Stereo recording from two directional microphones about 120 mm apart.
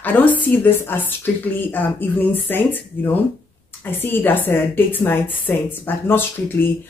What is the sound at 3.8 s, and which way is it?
Speech, 15° left (ahead or behind).